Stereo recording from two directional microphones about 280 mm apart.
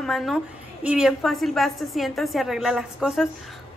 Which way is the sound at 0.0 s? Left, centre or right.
Centre.